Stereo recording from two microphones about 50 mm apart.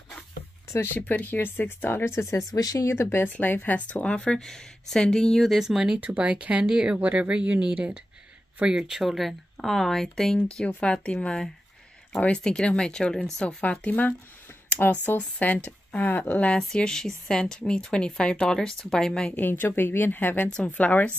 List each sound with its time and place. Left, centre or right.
0.9 s a woman's voice: left
2.1 s speech: left
3.3 s speech: left
4.4 s speech: centre
5.4 s speech: centre
5.9 s speech: right
6.6 s speech: centre
7.0 s speech: right; by 10.0 s centre
10.8 s speech: left
13.6 s a woman's voice: left
16.5 s speech: centre
19.3 s a woman's voice: left